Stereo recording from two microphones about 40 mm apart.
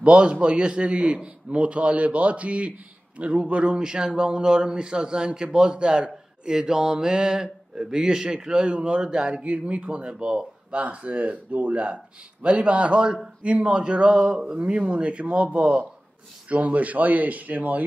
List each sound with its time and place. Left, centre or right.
0.0 s a man's voice: right
14.5 s a man's voice: right